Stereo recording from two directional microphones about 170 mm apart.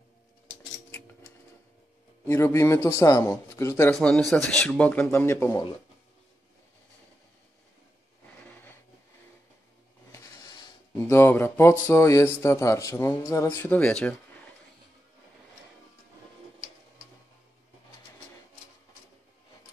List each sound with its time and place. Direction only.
2.2 s speech: 15° left (ahead or behind)
3.9 s speech: 5° left (ahead or behind)
8.4 s a sound: 10° left (ahead or behind)
11.0 s speech: 15° left (ahead or behind)